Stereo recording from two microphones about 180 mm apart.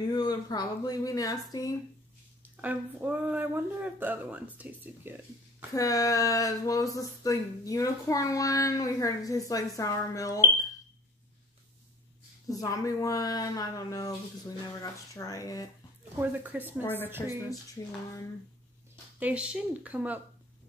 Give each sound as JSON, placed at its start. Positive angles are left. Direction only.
{"t": 0.0, "sound": "speech", "side_deg": 25}
{"t": 2.5, "sound": "speech", "side_deg": -10}
{"t": 5.8, "sound": "a woman's voice", "side_deg": 20}
{"t": 12.4, "sound": "speech", "side_deg": 20}
{"t": 16.2, "sound": "speech", "side_deg": -10}
{"t": 16.8, "sound": "a woman's voice", "side_deg": 10}
{"t": 19.1, "sound": "speech", "side_deg": -5}